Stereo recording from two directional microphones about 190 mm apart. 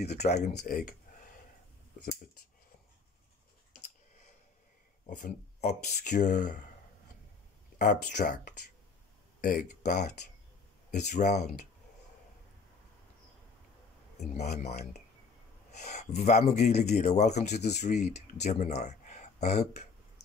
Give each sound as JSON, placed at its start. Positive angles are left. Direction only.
{"t": 0.0, "sound": "speech", "side_deg": 35}
{"t": 5.1, "sound": "speech", "side_deg": 40}
{"t": 7.8, "sound": "speech", "side_deg": 45}
{"t": 14.1, "sound": "speech", "side_deg": 35}